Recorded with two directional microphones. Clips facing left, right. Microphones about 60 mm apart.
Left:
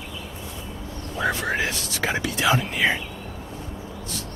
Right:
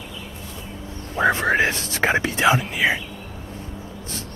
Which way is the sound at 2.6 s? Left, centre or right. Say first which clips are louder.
Right 1 dB; centre.